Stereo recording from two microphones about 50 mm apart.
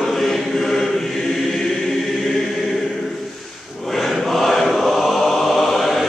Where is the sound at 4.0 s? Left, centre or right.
Centre.